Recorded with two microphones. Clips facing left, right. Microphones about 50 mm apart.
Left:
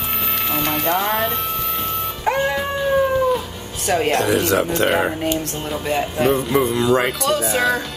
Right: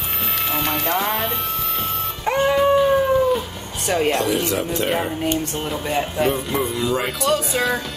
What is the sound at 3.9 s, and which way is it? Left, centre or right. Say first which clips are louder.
Speech: left 2 dB; centre.